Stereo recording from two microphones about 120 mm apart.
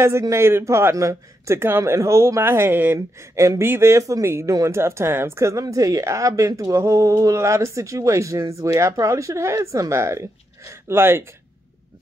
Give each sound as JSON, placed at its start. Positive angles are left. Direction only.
{"t": 0.2, "sound": "a man's voice", "side_deg": -25}